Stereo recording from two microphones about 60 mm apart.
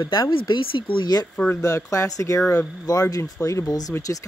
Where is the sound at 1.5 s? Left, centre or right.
Left.